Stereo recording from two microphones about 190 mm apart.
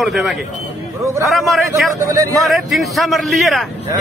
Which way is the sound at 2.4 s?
Centre (ahead or behind).